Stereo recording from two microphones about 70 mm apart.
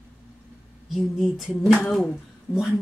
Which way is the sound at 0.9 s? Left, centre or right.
Centre.